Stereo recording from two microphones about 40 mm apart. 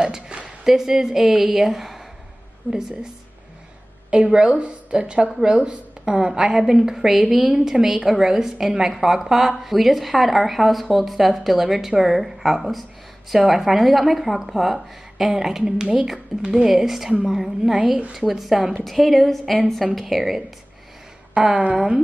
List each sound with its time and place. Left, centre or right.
0.0 s a sound: right
0.7 s a woman's voice: centre
2.6 s a woman's voice: right
4.1 s a woman's voice: right
6.1 s a woman's voice: centre
21.3 s a woman's voice: right